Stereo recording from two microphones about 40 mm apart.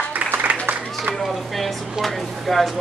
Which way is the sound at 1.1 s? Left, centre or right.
Centre.